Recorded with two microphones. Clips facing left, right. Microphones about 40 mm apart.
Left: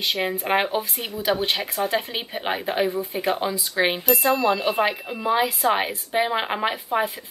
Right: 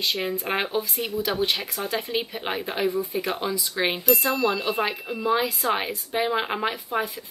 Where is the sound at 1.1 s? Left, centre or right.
Left.